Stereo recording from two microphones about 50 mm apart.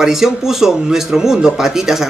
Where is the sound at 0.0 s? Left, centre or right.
Centre.